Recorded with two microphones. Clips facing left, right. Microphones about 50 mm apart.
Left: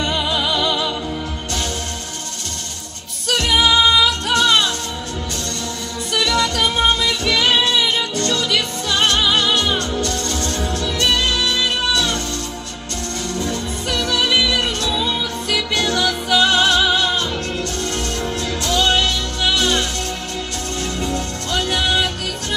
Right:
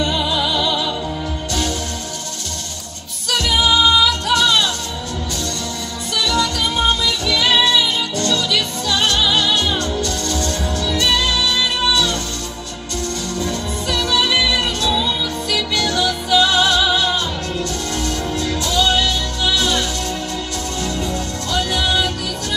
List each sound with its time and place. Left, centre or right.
0.0 s music: left
3.3 s music: left
6.1 s music: left
13.5 s music: left
14.9 s music: left
15.7 s music: left
18.6 s music: left